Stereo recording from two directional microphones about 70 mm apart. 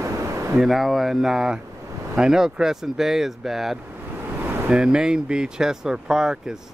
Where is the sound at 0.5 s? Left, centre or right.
Centre.